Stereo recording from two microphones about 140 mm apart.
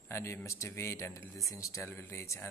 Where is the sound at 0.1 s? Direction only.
20° left (ahead or behind).